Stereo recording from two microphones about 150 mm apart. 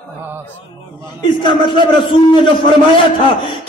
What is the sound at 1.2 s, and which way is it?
A man's voice, 30° left (ahead or behind).